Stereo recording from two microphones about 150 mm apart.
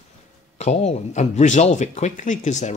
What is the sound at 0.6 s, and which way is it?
Speech, 50° left (ahead or behind).